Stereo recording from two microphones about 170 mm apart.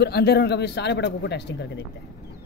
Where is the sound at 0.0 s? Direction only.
70° left (ahead or behind); by 1.4 s 90° left.